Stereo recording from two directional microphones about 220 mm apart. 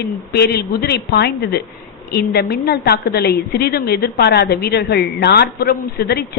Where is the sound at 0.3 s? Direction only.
45° left (ahead or behind).